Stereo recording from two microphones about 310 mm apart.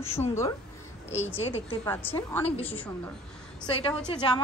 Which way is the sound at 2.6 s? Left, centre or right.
Centre.